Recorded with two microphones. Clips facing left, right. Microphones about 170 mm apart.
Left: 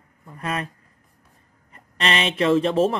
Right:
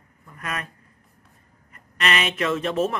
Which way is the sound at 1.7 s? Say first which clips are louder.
Left 1 dB; 30° left (ahead or behind).